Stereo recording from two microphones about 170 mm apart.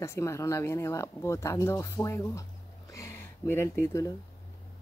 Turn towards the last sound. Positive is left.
turn(degrees=15)  # may be behind; listen again after turning